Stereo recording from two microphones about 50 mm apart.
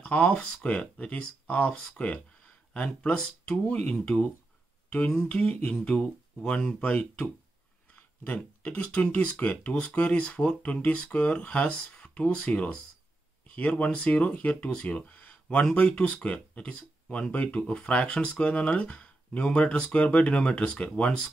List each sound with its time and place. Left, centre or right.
0.0 s speech: left